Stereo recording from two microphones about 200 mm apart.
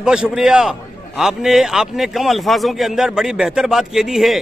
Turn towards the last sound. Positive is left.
turn(degrees=0)  # may be behind; listen again after turning